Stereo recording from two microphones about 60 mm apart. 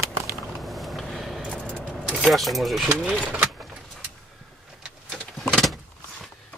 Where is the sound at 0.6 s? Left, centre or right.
Centre.